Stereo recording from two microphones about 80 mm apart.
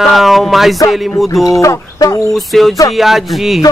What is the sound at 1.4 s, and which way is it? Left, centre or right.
Speech, left.